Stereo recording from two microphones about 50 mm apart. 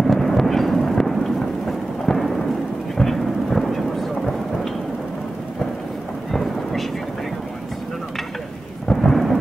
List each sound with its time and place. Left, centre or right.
0.0 s thunder: centre
6.3 s thunder: centre
8.9 s thunder: centre